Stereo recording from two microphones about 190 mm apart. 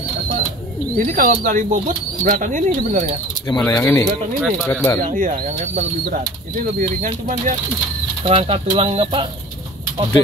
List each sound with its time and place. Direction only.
0.9 s speech: 45° right (ahead or behind)
3.4 s speech: 15° left (ahead or behind)
4.4 s speech: 5° left (ahead or behind)
5.0 s speech: 45° right (ahead or behind)
8.2 s speech: 30° right (ahead or behind)